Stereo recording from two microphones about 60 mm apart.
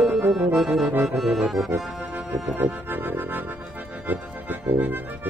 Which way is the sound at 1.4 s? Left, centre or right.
Centre.